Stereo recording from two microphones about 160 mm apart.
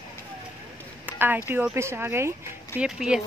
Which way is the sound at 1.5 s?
15° right (ahead or behind).